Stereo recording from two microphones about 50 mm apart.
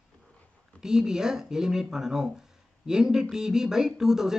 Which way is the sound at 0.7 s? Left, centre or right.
Centre.